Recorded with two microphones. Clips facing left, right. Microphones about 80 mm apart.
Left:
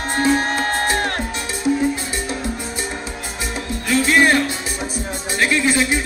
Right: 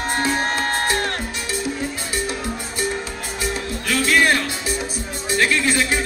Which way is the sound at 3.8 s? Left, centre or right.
Left.